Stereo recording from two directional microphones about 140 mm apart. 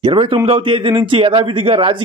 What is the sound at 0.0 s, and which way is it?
A man's voice, 40° right (ahead or behind).